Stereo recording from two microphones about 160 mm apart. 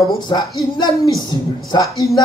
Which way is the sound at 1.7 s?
20° left (ahead or behind).